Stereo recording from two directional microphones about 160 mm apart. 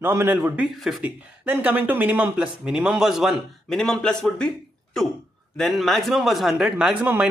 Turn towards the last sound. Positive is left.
turn(degrees=-10)  # may be behind; listen again after turning